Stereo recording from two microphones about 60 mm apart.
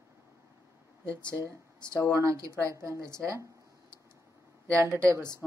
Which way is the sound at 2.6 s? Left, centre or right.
Right.